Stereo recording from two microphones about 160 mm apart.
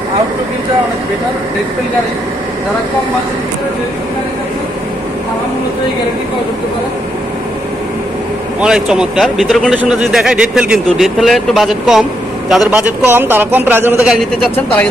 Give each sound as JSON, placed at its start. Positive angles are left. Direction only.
{"t": 8.5, "sound": "a man's voice", "side_deg": -5}